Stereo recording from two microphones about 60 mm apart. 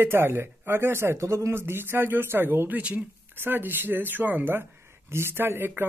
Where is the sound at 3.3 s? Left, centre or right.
Right.